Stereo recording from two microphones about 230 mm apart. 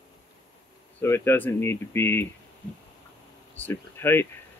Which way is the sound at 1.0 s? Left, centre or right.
Centre.